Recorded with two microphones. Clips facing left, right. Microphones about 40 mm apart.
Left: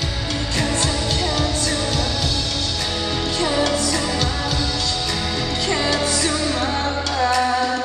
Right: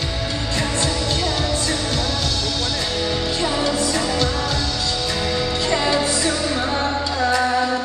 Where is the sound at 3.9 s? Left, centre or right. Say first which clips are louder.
Right 1 dB; centre.